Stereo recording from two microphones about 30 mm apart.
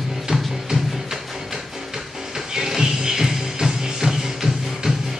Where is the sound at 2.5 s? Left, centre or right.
Centre.